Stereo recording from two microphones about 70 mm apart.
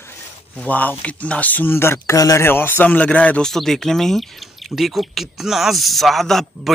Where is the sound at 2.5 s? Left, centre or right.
Left.